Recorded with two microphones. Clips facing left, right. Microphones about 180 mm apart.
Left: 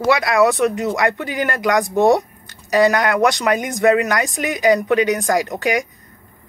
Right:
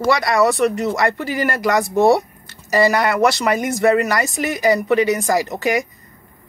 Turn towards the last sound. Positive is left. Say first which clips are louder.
# even
turn(degrees=-5)  # may be behind; listen again after turning